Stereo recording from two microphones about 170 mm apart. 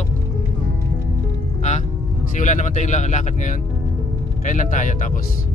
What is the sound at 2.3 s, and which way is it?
Speech, 45° left (ahead or behind).